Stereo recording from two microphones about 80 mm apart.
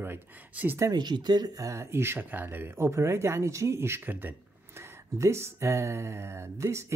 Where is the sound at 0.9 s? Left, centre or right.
Right.